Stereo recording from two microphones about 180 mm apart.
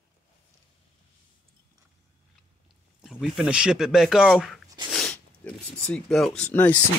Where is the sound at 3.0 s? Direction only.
Centre (ahead or behind).